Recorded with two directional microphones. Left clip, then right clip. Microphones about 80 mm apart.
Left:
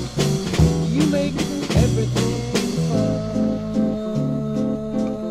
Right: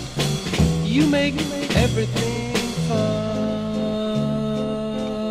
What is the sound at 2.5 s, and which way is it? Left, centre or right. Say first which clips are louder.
Music: left 1 dB; right.